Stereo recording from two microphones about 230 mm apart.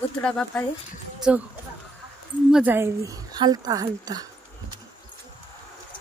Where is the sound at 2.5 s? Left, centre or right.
Centre.